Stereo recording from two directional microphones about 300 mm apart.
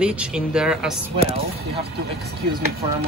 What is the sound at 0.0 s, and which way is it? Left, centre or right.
Speech, centre.